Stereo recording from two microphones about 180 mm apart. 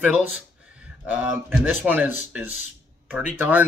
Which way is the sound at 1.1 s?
10° right (ahead or behind).